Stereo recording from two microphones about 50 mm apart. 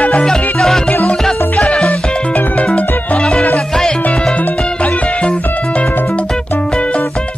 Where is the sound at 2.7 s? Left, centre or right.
Centre.